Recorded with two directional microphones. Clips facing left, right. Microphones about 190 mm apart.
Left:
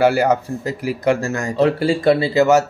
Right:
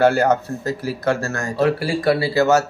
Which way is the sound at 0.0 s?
10° left (ahead or behind).